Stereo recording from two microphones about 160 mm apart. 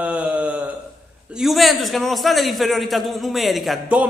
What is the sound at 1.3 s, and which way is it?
A man's voice, centre (ahead or behind).